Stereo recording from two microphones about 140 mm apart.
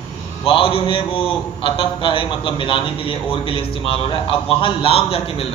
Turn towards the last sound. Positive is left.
turn(degrees=40)  # may be behind; listen again after turning